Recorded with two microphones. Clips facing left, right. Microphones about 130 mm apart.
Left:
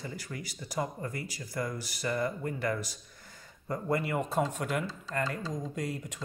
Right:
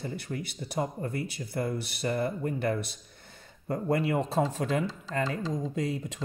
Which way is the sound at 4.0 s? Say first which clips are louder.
Right 3 dB; 25° right (ahead or behind).